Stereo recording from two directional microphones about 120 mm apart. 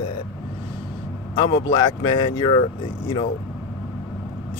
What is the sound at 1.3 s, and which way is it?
Speech, 45° left (ahead or behind).